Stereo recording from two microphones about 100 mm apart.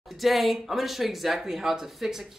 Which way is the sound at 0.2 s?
Centre (ahead or behind).